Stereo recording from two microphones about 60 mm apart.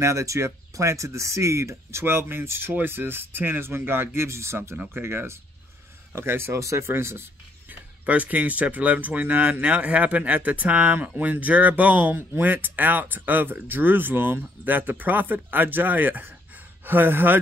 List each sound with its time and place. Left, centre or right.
0.0 s speech: right
6.9 s speech: right
8.0 s speech: right